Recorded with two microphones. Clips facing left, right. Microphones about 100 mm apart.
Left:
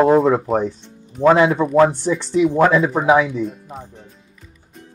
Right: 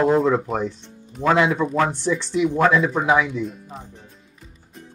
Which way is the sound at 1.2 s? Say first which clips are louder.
Left 7 dB; centre (ahead or behind).